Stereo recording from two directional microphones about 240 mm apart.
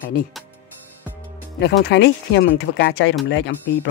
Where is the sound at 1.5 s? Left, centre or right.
Left.